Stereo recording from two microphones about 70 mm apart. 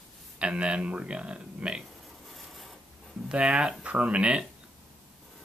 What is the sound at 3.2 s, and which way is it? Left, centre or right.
Speech, centre.